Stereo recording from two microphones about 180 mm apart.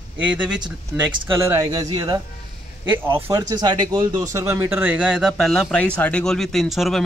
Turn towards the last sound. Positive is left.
turn(degrees=0)  # may be behind; listen again after turning